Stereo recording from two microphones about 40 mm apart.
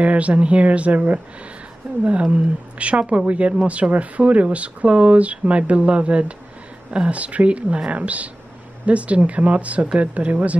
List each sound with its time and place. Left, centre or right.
0.0 s speech: right
1.8 s a woman's voice: right